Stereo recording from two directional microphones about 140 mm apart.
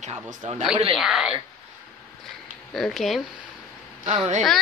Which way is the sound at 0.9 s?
Centre (ahead or behind).